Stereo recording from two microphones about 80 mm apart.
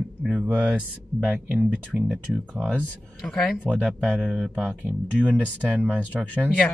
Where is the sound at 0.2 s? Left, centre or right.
Centre.